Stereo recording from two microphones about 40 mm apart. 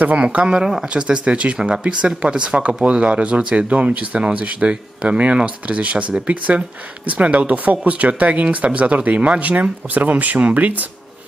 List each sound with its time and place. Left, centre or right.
0.5 s speech: centre
0.8 s speech: right